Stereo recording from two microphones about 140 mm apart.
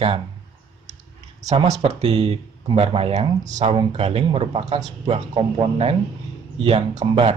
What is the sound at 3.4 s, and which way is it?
Speech, 60° right (ahead or behind).